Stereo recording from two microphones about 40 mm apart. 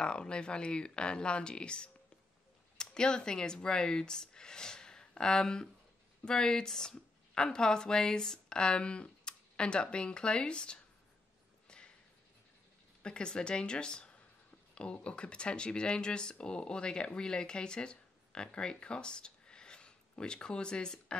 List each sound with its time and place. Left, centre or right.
0.0 s speech: left
13.0 s speech: left